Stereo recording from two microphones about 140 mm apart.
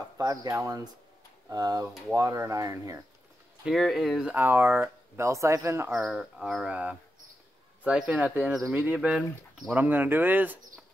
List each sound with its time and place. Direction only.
0.2 s speech: 25° right (ahead or behind)
3.6 s speech: centre (ahead or behind); by 5.9 s 20° right (ahead or behind)
5.9 s speech: 5° right (ahead or behind)